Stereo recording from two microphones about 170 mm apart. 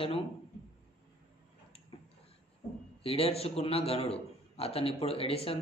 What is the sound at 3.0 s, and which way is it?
A man's voice, 35° left (ahead or behind).